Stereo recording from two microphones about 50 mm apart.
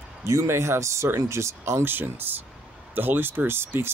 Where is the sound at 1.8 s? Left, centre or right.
Right.